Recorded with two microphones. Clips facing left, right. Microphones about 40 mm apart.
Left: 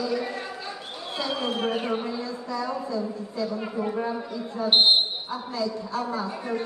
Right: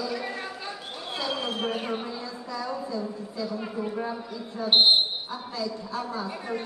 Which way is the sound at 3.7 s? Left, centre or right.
Centre.